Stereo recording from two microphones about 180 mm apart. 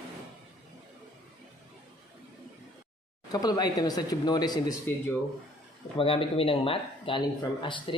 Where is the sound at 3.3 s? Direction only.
20° left (ahead or behind).